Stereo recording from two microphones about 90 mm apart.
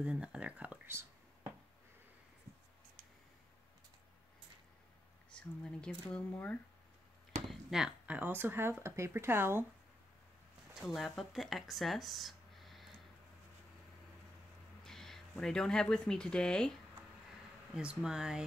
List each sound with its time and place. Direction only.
0.0 s speech: 10° right (ahead or behind)
0.8 s whispering: 30° right (ahead or behind)
5.3 s speech: 10° left (ahead or behind)
7.4 s a sound: 5° right (ahead or behind)
8.1 s speech: 20° right (ahead or behind)
10.7 s speech: centre (ahead or behind)
14.8 s speech: 5° left (ahead or behind)
17.7 s speech: 10° right (ahead or behind)